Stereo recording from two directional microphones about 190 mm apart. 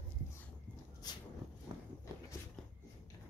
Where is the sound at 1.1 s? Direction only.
20° left (ahead or behind).